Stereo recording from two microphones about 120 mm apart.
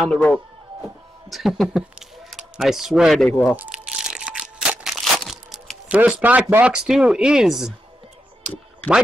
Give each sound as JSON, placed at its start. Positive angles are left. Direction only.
{"t": 0.0, "sound": "speech", "side_deg": 5}
{"t": 3.3, "sound": "speech", "side_deg": 10}
{"t": 3.5, "sound": "crumpling", "side_deg": -10}
{"t": 5.9, "sound": "speech", "side_deg": -10}
{"t": 6.7, "sound": "speech", "side_deg": -5}